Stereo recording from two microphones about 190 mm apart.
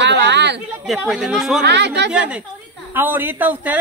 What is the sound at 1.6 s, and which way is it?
Speech, 65° right (ahead or behind).